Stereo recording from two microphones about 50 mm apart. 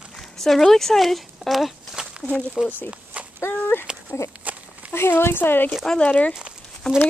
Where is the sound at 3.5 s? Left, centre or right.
Left.